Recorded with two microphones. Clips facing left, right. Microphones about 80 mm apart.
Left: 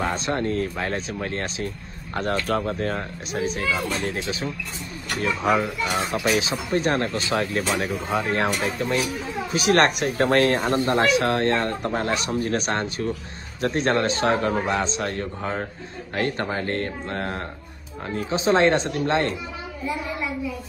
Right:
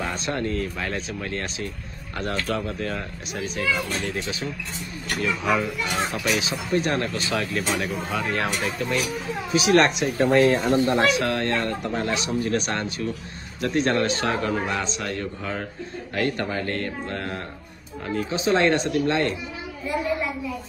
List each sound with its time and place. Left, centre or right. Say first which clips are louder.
0.0 s speech: left 3 dB; left
10.9 s speech: left 1 dB; left